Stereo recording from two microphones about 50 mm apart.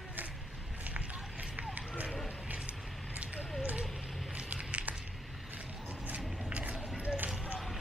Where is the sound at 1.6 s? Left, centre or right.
Right.